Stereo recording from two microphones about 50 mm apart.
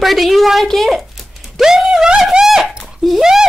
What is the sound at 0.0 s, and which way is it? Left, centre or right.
A woman's voice, centre.